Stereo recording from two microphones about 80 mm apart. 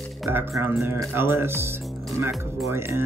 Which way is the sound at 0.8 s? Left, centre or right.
Right.